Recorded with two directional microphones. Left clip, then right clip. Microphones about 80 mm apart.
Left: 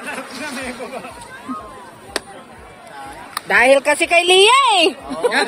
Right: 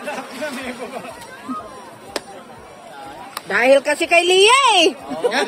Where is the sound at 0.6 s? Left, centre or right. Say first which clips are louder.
Left 1 dB; centre.